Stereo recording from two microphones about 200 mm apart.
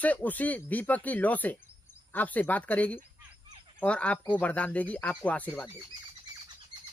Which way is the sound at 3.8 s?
5° left (ahead or behind).